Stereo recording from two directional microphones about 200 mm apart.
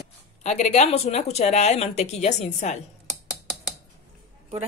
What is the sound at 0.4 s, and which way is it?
A woman's voice, 35° left (ahead or behind).